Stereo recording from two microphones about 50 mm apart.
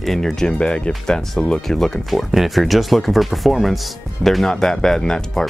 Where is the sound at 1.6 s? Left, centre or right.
Centre.